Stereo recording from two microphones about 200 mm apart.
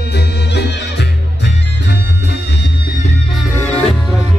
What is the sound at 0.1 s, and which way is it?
Music, 55° left (ahead or behind).